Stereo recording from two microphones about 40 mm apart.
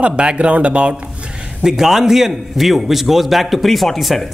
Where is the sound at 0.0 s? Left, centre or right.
Right.